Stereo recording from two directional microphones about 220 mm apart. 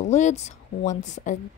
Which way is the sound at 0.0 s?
35° left (ahead or behind).